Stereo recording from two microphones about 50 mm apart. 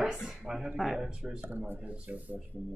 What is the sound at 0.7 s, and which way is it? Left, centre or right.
Speech, centre.